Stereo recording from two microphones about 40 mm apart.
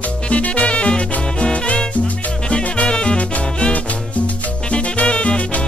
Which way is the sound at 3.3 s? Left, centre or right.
Left.